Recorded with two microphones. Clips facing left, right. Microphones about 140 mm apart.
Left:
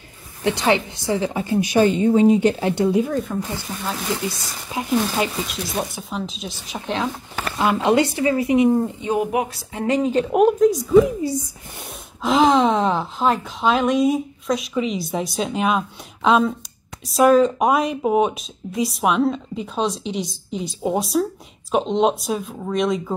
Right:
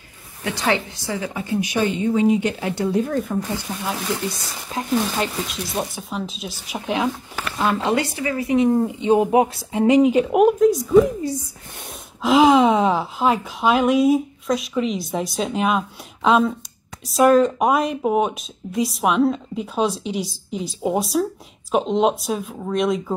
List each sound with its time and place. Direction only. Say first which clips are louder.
0.4 s a woman's voice: left 3 dB; 25° left (ahead or behind)
2.9 s speech: left 1 dB; 5° left (ahead or behind)
4.6 s speech: left 1 dB; 10° left (ahead or behind); by 7.4 s 10° right (ahead or behind)
7.5 s speech: left 3 dB; 10° left (ahead or behind)
8.6 s speech: even; centre (ahead or behind)
9.0 s speech: right 5 dB; 25° right (ahead or behind)
10.2 s speech: even; centre (ahead or behind)
12.2 s speech: right 2 dB; 5° right (ahead or behind)